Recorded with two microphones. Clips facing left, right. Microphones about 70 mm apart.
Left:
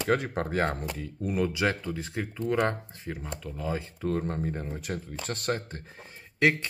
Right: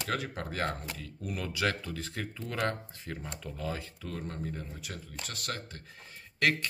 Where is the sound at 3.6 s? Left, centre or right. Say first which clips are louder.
Left 8 dB; left.